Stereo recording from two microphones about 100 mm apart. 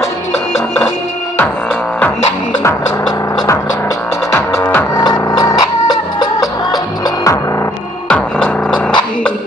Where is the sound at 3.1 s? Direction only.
40° left (ahead or behind).